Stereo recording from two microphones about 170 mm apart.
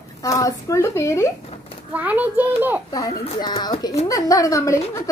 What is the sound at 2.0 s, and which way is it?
Speech, 10° right (ahead or behind).